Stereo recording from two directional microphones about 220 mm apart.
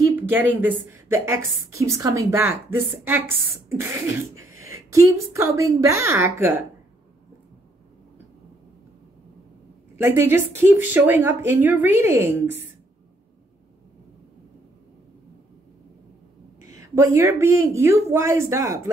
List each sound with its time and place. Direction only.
0.1 s speech: 10° right (ahead or behind)
3.6 s cough: 10° right (ahead or behind)
4.4 s a woman's voice: 15° right (ahead or behind)
9.9 s speech: 10° right (ahead or behind)
16.7 s speech: 15° right (ahead or behind)